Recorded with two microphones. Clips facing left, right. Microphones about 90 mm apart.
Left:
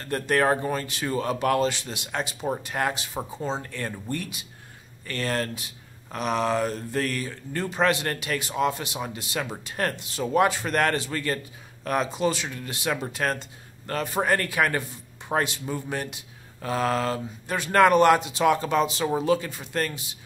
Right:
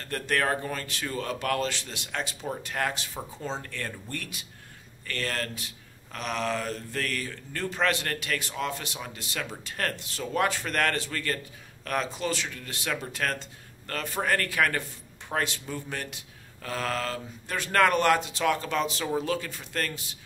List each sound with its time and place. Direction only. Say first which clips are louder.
0.1 s a man's voice: left 5 dB; 20° left (ahead or behind)